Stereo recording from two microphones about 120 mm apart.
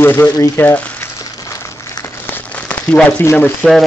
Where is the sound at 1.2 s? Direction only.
30° left (ahead or behind).